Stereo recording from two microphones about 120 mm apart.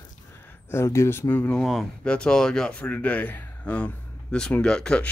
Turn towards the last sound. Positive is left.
turn(degrees=5)  # may be behind; listen again after turning